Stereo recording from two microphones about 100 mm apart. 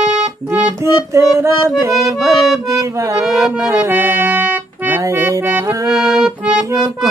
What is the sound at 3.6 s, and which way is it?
Music, 20° right (ahead or behind).